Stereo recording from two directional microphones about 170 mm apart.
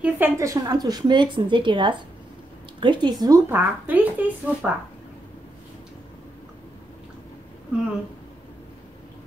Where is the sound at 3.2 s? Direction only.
15° right (ahead or behind).